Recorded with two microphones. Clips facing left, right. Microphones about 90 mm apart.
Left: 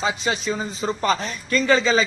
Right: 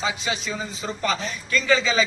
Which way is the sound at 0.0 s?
35° left (ahead or behind).